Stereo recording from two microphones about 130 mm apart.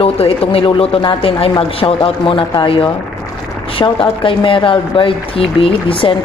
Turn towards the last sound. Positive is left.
turn(degrees=45)  # may be behind; listen again after turning